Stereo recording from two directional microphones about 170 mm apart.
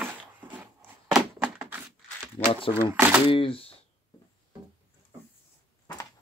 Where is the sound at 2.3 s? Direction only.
35° left (ahead or behind).